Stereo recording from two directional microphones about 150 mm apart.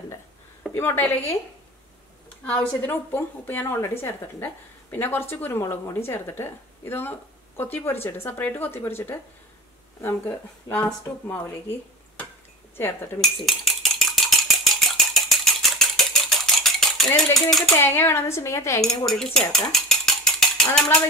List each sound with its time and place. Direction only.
0.7 s a woman's voice: 15° left (ahead or behind)
2.4 s a woman's voice: 10° left (ahead or behind)
12.7 s a woman's voice: 15° left (ahead or behind)
13.2 s a sound: centre (ahead or behind)
17.7 s a woman's voice: 15° left (ahead or behind)
18.8 s cutlery: 5° left (ahead or behind)
19.7 s mechanisms: 5° left (ahead or behind)